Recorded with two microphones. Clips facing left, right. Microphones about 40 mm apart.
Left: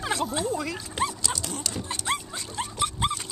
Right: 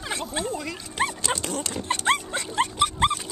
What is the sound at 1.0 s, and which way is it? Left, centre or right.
Dog, right.